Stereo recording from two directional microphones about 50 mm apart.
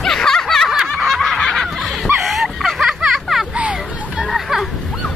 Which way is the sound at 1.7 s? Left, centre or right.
Centre.